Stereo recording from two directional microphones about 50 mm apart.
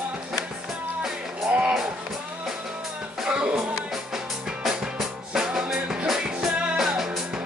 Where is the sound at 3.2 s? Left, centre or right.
Centre.